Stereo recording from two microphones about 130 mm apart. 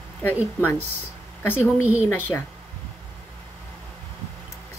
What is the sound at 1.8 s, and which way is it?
Speech, 15° right (ahead or behind).